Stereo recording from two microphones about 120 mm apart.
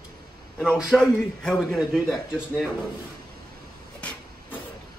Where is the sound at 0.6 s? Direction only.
5° right (ahead or behind).